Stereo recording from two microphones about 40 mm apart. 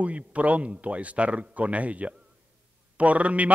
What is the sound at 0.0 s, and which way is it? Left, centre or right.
A man's voice, right.